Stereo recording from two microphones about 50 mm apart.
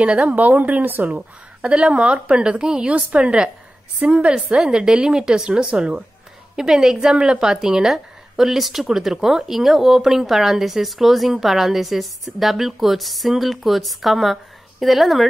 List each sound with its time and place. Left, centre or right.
0.0 s speech: right
1.6 s a woman's voice: right
4.4 s a woman's voice: centre
6.5 s speech: centre